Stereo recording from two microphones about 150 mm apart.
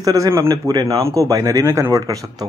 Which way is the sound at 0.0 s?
20° right (ahead or behind).